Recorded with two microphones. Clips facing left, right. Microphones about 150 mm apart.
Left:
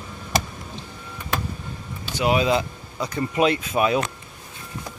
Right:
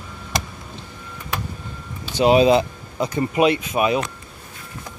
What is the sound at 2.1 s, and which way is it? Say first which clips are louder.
Speech: right 6 dB; 25° right (ahead or behind).